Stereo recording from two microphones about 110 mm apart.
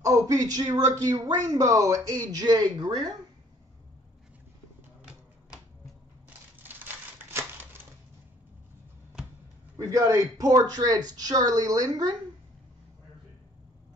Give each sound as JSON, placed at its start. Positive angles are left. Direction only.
{"t": 0.0, "sound": "speech", "side_deg": -30}
{"t": 6.6, "sound": "crumpling", "side_deg": -20}
{"t": 9.8, "sound": "speech", "side_deg": -30}